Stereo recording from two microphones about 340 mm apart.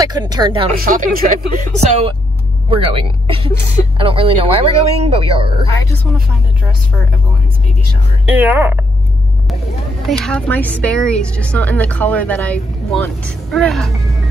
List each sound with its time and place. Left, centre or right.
0.0 s speech: centre
8.3 s a woman's voice: centre
10.0 s a woman's voice: centre